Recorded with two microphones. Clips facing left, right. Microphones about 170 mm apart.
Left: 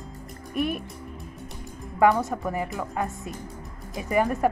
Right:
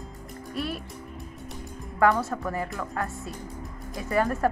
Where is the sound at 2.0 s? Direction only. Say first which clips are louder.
Left 2 dB; 15° left (ahead or behind).